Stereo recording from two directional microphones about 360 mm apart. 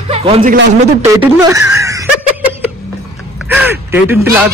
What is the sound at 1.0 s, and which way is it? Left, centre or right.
Speech, centre.